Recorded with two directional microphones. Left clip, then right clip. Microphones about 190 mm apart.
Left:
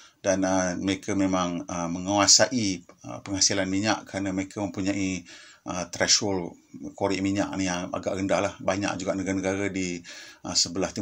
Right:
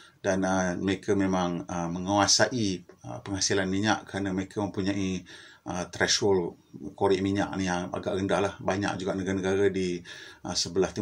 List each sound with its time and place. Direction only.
0.2 s speech: 35° left (ahead or behind)